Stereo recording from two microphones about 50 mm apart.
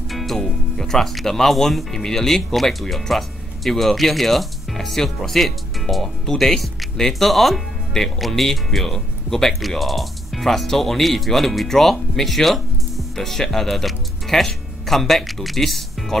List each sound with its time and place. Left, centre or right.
0.1 s speech: centre